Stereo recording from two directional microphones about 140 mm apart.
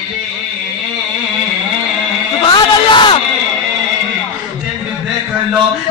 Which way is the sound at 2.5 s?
35° left (ahead or behind).